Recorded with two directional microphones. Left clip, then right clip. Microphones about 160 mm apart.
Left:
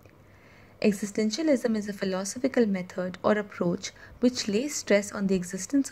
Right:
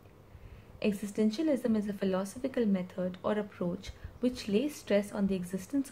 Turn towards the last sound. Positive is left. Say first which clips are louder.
# left 7 dB
turn(degrees=35)  # may be behind; listen again after turning